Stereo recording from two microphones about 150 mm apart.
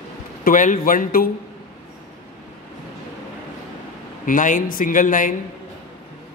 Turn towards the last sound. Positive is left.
turn(degrees=60)  # may be behind; listen again after turning